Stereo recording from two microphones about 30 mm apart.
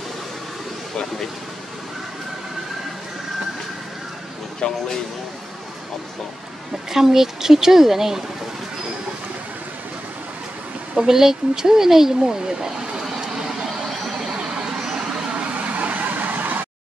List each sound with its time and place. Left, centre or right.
4.6 s speech: left
6.9 s a woman's voice: centre
11.1 s speech: centre
13.8 s vehicle: centre
14.3 s vehicle: right
15.3 s vehicle: right